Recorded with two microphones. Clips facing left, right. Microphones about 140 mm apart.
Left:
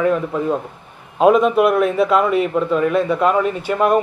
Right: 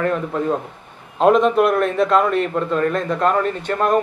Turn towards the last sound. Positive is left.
turn(degrees=5)  # may be behind; listen again after turning